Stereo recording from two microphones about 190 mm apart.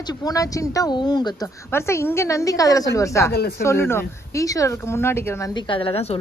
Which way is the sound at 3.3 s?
55° left (ahead or behind).